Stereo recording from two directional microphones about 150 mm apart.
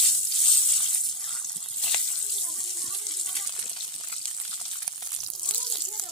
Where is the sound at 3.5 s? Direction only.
35° left (ahead or behind).